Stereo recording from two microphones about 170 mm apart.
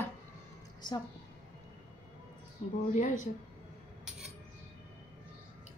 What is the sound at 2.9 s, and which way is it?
Speech, 45° left (ahead or behind).